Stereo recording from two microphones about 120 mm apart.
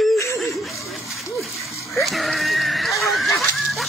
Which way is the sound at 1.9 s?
Centre (ahead or behind).